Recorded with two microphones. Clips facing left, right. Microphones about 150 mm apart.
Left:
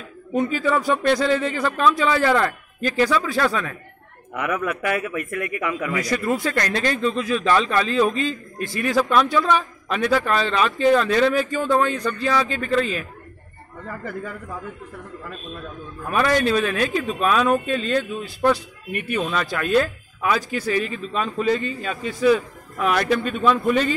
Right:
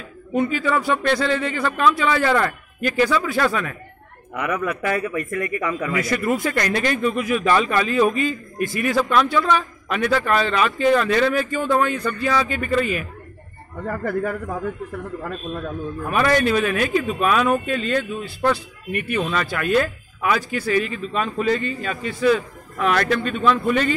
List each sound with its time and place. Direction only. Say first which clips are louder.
0.3 s a man's voice: even; centre (ahead or behind)
6.5 s a man's voice: right 1 dB; 10° right (ahead or behind)
8.9 s speech: left 1 dB; centre (ahead or behind)
13.8 s a man's voice: right 8 dB; 60° right (ahead or behind)
16.1 s speech: right 1 dB; 5° right (ahead or behind)